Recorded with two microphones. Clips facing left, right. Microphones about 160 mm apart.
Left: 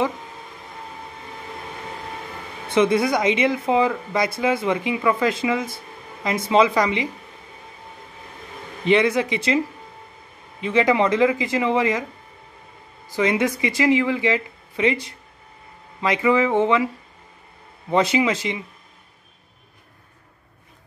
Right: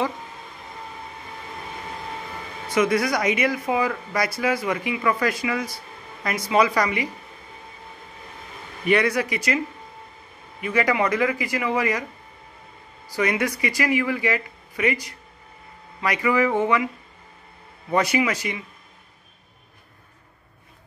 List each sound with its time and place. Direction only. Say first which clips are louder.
2.7 s speech: left 3 dB; 25° left (ahead or behind)
8.8 s speech: left 3 dB; 25° left (ahead or behind)
10.6 s speech: left 3 dB; 25° left (ahead or behind)
13.1 s speech: left 3 dB; 20° left (ahead or behind)